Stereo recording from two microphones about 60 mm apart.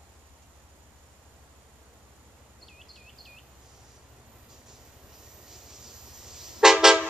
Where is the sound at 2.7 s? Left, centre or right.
Centre.